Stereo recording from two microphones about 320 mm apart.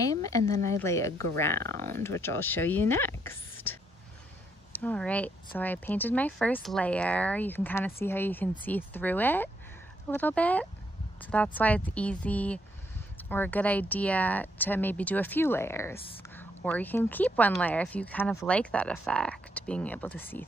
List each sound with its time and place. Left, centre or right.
0.0 s a sound: centre
0.7 s speech: centre
1.6 s speech: right
1.9 s speech: centre
4.7 s speech: centre